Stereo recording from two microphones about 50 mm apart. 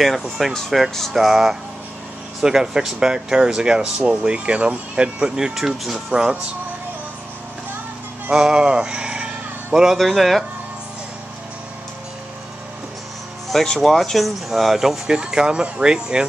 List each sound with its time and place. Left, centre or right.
0.0 s speech: centre
0.5 s speech: centre
8.3 s sheep: centre
9.9 s speech: centre
13.5 s speech: centre